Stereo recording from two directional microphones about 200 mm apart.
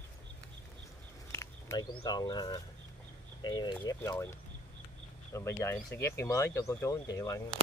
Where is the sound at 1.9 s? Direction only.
20° left (ahead or behind).